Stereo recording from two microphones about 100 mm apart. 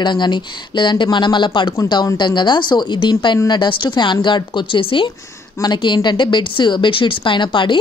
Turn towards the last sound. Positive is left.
turn(degrees=55)  # may be behind; listen again after turning